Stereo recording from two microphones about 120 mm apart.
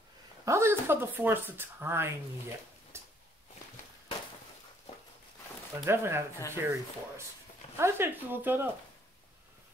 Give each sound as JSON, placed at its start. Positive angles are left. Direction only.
{"t": 0.5, "sound": "speech", "side_deg": -20}
{"t": 2.9, "sound": "a sound", "side_deg": -20}
{"t": 5.9, "sound": "speech", "side_deg": -20}